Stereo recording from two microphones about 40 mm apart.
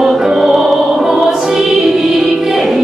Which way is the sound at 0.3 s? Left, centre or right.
Centre.